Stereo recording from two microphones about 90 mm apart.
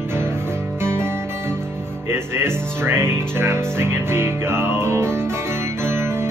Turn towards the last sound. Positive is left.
turn(degrees=-25)  # may be behind; listen again after turning